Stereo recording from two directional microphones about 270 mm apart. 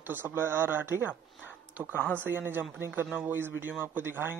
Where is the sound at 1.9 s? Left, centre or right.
Centre.